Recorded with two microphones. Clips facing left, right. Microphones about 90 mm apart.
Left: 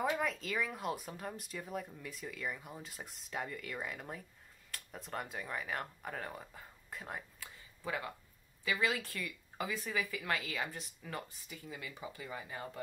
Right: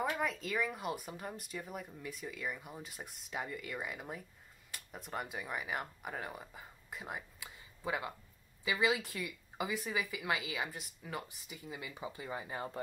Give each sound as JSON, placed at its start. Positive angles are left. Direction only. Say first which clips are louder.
{"t": 0.1, "sound": "speech", "louder": "even", "side_deg": 0}
{"t": 7.8, "sound": "speech", "louder": "right 2 dB", "side_deg": -20}
{"t": 11.4, "sound": "speech", "louder": "right 1 dB", "side_deg": -20}